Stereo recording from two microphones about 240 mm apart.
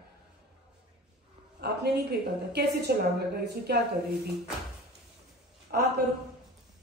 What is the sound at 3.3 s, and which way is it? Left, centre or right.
Speech, right.